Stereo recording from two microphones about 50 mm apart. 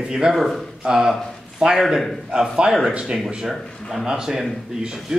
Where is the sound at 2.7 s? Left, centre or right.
Centre.